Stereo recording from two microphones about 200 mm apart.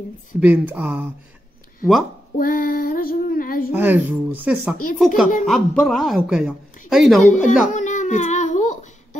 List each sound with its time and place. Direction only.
0.4 s speech: 10° right (ahead or behind)
2.3 s child singing: 45° left (ahead or behind)
3.7 s speech: 10° right (ahead or behind)
7.2 s a sound: 40° left (ahead or behind)